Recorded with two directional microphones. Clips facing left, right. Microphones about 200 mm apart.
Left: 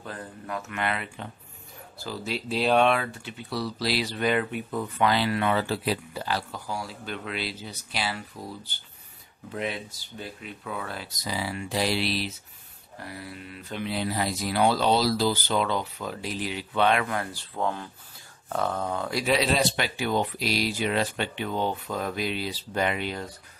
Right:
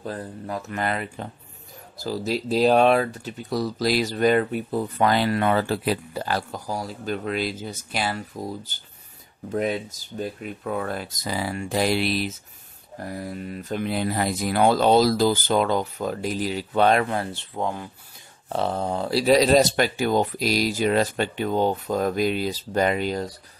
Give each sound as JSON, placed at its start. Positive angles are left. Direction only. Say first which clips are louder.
{"t": 0.0, "sound": "speech", "louder": "right 6 dB", "side_deg": -35}
{"t": 18.5, "sound": "speech", "louder": "right 3 dB", "side_deg": -30}